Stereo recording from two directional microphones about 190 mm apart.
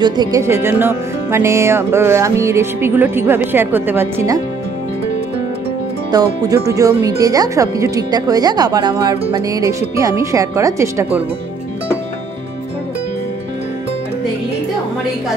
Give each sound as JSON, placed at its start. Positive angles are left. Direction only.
{"t": 0.0, "sound": "speech", "side_deg": -20}
{"t": 6.1, "sound": "speech", "side_deg": -15}